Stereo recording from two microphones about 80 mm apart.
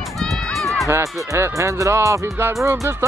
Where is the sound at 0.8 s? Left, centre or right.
Right.